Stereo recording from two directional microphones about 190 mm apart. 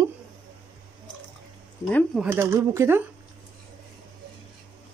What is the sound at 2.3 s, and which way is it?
Speech, 15° right (ahead or behind).